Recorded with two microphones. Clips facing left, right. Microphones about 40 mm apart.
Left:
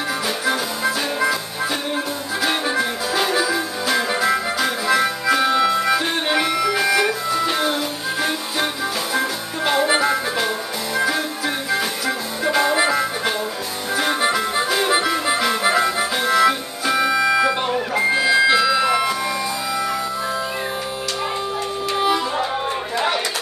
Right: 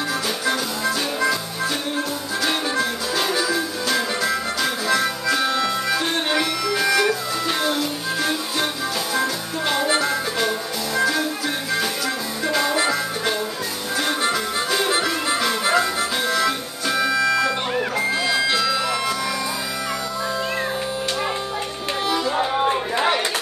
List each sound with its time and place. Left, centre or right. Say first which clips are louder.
0.5 s music: left 2 dB; centre
2.4 s music: left 2 dB; centre
12.4 s harmonica: left 3 dB; centre
13.9 s music: left 3 dB; centre
22.7 s chatter: right 2 dB; centre